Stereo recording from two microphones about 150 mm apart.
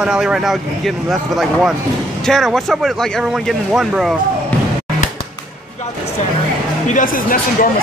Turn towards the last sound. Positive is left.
turn(degrees=65)  # may be behind; listen again after turning